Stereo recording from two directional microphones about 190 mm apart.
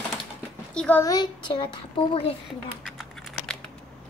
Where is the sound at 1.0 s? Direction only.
20° left (ahead or behind).